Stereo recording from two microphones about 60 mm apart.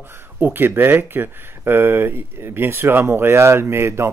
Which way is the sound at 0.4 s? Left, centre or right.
Right.